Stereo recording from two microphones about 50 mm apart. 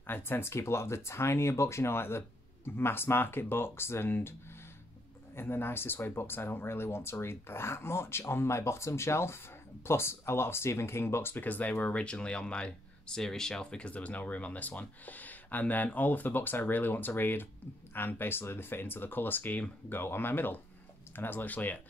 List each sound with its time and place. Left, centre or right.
0.0 s speech: left
11.3 s speech: left; by 13.8 s centre
13.8 s speech: left
19.9 s speech: left